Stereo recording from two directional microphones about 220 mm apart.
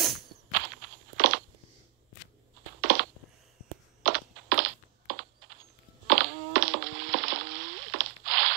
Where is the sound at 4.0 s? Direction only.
55° right (ahead or behind).